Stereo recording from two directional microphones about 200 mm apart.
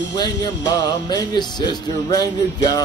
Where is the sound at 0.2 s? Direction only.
20° left (ahead or behind).